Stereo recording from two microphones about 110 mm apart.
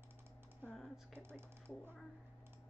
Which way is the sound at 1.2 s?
20° right (ahead or behind).